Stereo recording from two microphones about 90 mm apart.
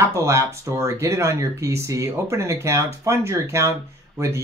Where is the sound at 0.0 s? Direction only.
35° right (ahead or behind).